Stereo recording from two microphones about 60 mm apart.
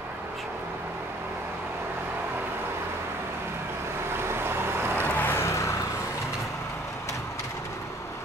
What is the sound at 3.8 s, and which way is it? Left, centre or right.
Vehicle, right.